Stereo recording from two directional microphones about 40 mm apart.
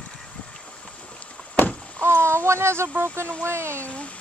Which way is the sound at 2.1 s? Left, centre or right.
Right.